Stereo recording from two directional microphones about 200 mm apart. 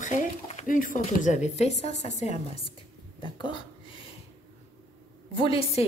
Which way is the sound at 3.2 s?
25° left (ahead or behind).